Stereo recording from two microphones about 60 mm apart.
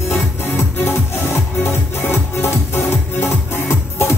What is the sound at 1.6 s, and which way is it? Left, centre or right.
Music, left.